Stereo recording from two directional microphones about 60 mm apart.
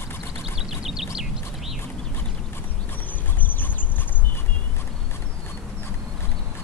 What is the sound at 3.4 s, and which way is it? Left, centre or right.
Boat, left.